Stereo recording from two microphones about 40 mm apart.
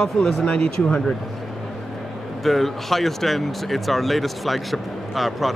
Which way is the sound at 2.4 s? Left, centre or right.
Centre.